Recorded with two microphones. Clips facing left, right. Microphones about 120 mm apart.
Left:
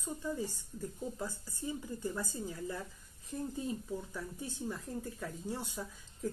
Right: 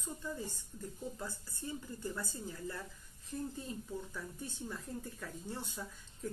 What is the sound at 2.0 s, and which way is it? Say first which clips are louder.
Speech: left 3 dB; 15° left (ahead or behind).